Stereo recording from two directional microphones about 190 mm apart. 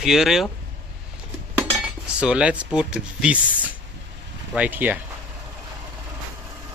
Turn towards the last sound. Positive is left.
turn(degrees=-10)  # may be behind; listen again after turning